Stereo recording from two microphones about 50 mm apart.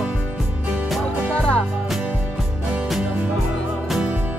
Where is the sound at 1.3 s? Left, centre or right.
Left.